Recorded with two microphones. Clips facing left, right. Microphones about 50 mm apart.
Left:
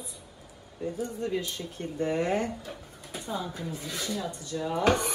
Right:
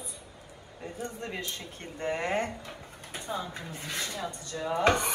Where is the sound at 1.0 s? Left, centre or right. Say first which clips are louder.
Left 5 dB; right.